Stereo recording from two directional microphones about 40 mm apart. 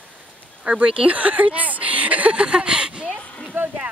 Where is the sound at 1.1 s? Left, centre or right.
Right.